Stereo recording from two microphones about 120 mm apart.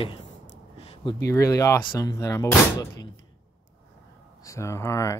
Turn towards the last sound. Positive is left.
turn(degrees=25)  # may be behind; listen again after turning